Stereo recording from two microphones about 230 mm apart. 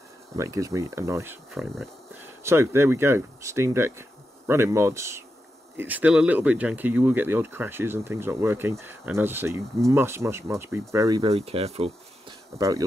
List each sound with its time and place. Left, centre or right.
0.4 s speech: centre
11.2 s speech: right
12.5 s speech: centre